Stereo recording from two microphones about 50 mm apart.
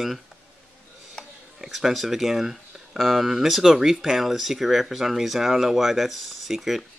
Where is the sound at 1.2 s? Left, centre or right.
Centre.